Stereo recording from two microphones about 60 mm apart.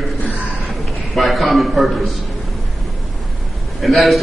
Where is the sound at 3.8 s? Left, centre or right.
Centre.